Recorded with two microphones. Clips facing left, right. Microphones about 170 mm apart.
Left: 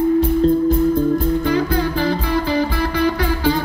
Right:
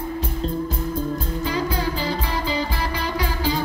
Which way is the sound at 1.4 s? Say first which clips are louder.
Left 6 dB; 55° left (ahead or behind).